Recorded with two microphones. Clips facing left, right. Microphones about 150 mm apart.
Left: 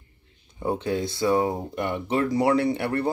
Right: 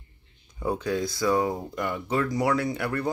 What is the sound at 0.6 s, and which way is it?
Speech, 25° left (ahead or behind).